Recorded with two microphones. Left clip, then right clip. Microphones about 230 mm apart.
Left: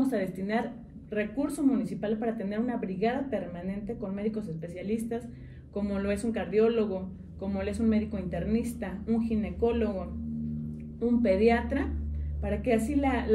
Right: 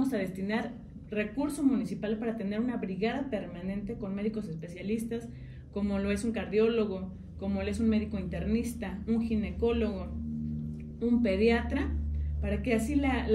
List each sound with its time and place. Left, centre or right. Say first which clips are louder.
0.0 s speech: left 2 dB; centre